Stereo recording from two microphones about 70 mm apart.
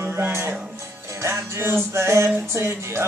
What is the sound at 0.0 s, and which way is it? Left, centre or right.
Music, right.